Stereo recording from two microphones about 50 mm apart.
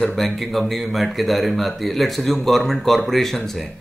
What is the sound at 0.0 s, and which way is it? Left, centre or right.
Speech, centre.